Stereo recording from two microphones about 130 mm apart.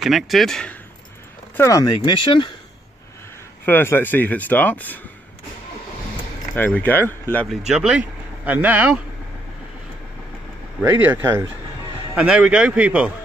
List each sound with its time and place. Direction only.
0.0 s speech: centre (ahead or behind)
1.6 s speech: 25° left (ahead or behind)
3.6 s speech: 15° left (ahead or behind)
6.5 s speech: 15° left (ahead or behind)
7.4 s speech: 5° right (ahead or behind)
10.8 s speech: 15° right (ahead or behind)